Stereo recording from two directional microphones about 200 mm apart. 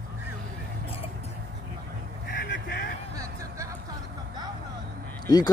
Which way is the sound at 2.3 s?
50° left (ahead or behind).